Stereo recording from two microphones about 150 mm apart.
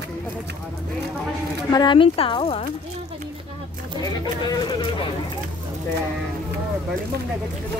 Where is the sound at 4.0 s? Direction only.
25° left (ahead or behind).